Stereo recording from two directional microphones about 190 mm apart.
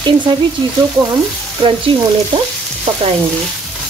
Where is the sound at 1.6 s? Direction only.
25° right (ahead or behind).